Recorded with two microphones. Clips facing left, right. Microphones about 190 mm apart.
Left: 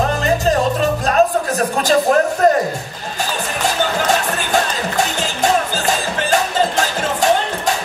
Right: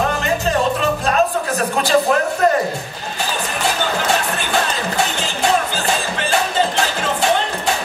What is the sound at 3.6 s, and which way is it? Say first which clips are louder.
Music: left 2 dB; 40° left (ahead or behind).